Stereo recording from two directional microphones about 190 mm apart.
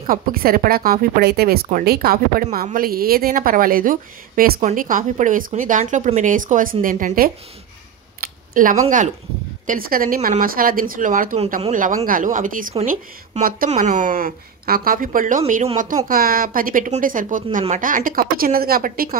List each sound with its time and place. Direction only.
0.0 s a woman's voice: 50° right (ahead or behind)
8.2 s a sound: 45° right (ahead or behind)
9.7 s a woman's voice: 50° right (ahead or behind)